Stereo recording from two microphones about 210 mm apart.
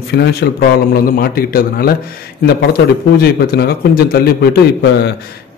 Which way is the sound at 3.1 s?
50° left (ahead or behind).